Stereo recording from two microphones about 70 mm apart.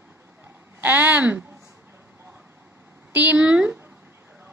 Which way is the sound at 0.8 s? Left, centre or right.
Right.